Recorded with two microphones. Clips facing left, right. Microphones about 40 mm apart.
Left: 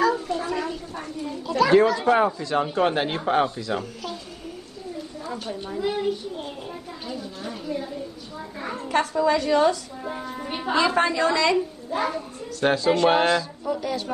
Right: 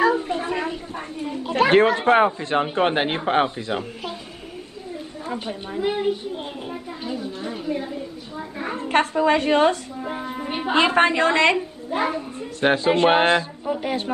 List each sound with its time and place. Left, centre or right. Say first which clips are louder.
0.0 s speech: right 2 dB; right
5.2 s a woman's voice: right 3 dB; right
8.8 s a woman's voice: right 3 dB; right
10.0 s a woman's voice: right 2 dB; right
10.7 s a woman's voice: right 3 dB; right
11.5 s a child's voice: even; right